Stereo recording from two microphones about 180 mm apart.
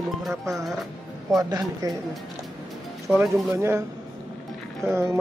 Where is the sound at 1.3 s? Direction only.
20° right (ahead or behind).